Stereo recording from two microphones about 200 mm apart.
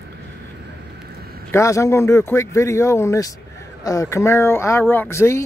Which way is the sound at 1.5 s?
15° left (ahead or behind).